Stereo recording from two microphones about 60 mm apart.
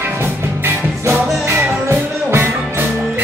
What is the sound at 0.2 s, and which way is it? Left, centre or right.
Music, right.